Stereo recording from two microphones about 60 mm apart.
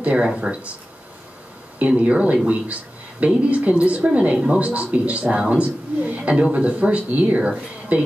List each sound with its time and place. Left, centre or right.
0.0 s a man's voice: centre
1.8 s a man's voice: right